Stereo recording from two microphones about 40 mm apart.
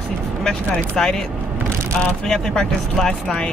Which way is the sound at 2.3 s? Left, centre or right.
Centre.